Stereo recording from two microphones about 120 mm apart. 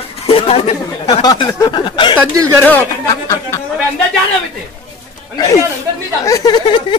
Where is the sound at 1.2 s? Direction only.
35° left (ahead or behind).